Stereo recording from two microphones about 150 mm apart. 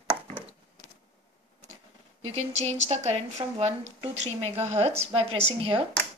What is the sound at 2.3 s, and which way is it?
A woman's voice, 45° right (ahead or behind).